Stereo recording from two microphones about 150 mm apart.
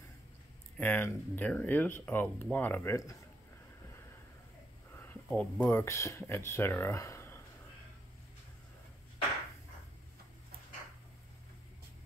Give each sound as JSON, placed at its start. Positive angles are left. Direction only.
{"t": 0.7, "sound": "speech", "side_deg": 10}
{"t": 5.3, "sound": "speech", "side_deg": 10}